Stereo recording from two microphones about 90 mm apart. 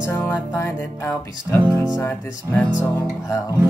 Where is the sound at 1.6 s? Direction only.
55° right (ahead or behind).